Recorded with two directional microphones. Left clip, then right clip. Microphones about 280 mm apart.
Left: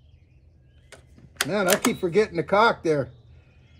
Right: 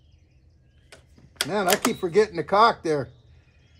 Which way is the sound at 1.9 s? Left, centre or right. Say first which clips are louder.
Right 1 dB; centre.